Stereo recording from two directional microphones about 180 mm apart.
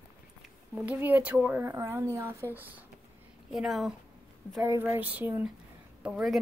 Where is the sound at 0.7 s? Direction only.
10° right (ahead or behind).